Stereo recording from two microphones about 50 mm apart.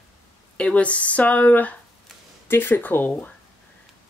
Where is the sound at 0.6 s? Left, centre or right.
Left.